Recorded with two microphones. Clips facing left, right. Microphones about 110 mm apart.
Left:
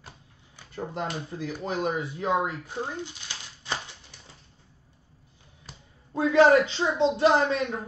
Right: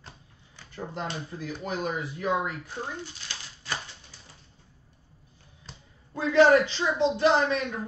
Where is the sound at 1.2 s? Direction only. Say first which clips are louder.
Left 2 dB; 25° left (ahead or behind).